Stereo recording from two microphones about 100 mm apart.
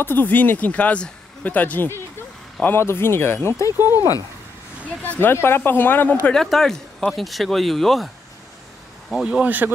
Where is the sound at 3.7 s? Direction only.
20° right (ahead or behind).